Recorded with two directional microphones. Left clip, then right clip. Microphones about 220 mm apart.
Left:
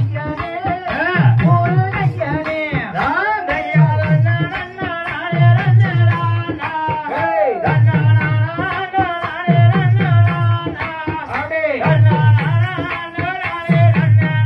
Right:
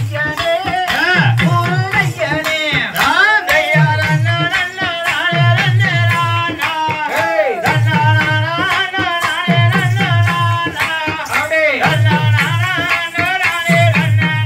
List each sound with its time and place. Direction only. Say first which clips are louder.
2.7 s music: right 7 dB; 50° right (ahead or behind)
13.7 s music: right 5 dB; 15° right (ahead or behind)